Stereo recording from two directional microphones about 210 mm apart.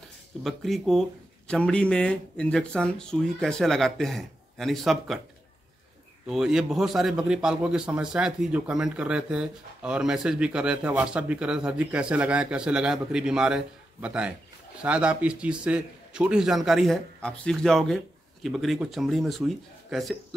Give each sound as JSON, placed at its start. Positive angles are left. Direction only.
{"t": 0.4, "sound": "a man's voice", "side_deg": 0}
{"t": 6.2, "sound": "a man's voice", "side_deg": 0}